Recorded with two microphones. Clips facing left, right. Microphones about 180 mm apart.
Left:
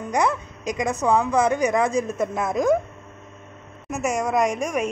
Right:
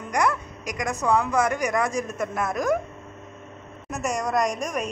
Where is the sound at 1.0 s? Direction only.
20° left (ahead or behind).